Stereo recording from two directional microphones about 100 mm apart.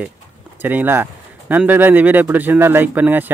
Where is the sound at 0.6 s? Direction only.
15° right (ahead or behind).